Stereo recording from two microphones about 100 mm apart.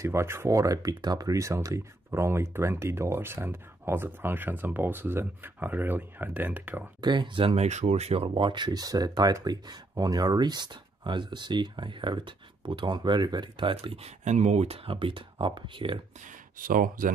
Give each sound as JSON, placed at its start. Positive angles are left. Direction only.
{"t": 0.0, "sound": "speech", "side_deg": -25}
{"t": 7.0, "sound": "speech", "side_deg": -45}